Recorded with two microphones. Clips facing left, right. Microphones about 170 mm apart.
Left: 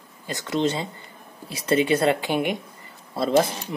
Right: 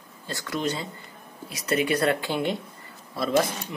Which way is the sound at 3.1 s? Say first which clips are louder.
Left 3 dB; 30° left (ahead or behind).